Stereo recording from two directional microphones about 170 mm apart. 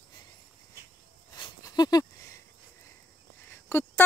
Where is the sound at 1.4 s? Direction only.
25° left (ahead or behind).